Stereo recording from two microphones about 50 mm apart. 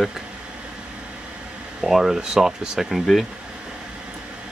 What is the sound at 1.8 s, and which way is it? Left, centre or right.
Speech, centre.